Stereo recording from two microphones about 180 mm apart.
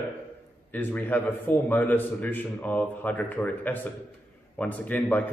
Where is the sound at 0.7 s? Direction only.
10° left (ahead or behind).